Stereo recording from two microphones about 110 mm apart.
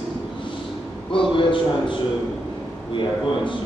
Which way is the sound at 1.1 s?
50° left (ahead or behind).